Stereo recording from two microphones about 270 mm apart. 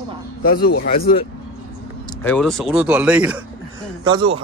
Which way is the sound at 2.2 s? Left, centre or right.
Centre.